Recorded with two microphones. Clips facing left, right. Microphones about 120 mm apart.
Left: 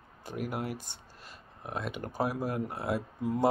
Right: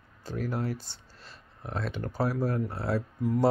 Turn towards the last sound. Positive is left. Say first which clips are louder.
# right 3 dB
turn(degrees=15)  # may be behind; listen again after turning